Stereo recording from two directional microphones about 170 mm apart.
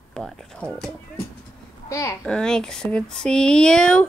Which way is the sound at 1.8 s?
20° left (ahead or behind).